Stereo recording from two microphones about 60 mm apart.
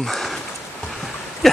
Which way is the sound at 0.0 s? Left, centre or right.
Centre.